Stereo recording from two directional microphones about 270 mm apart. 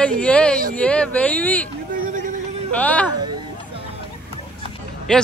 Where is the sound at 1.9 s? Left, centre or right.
Right.